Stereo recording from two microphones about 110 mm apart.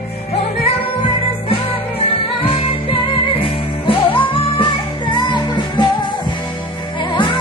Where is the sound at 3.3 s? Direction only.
55° left (ahead or behind).